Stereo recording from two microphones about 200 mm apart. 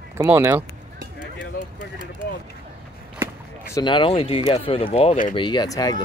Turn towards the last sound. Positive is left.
turn(degrees=20)  # may be behind; listen again after turning